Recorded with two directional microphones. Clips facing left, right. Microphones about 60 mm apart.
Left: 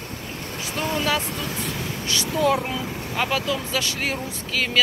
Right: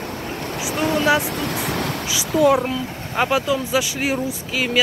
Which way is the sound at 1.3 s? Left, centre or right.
Right.